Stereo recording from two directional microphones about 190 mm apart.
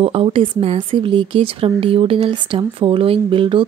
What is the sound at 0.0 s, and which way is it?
Speech, 30° right (ahead or behind).